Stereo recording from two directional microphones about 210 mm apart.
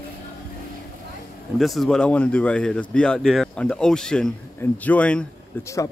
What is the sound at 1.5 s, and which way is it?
Speech, centre (ahead or behind).